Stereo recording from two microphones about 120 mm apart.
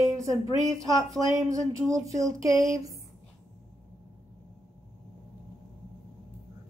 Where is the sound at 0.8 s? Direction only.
30° right (ahead or behind).